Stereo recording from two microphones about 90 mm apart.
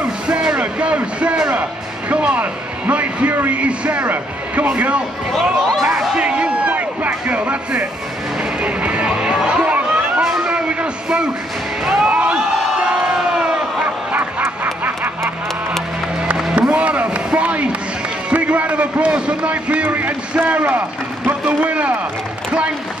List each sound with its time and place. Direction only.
0.0 s music: 10° right (ahead or behind)
2.9 s a man's voice: 15° right (ahead or behind)
5.3 s speech: 5° left (ahead or behind)
5.9 s a sound: 10° right (ahead or behind)
8.6 s music: 15° right (ahead or behind)
11.8 s a sound: 10° right (ahead or behind)
12.5 s crowd: 10° right (ahead or behind)
14.1 s goose: 20° right (ahead or behind)
16.3 s a sound: 10° right (ahead or behind)
21.3 s a man's voice: 15° right (ahead or behind)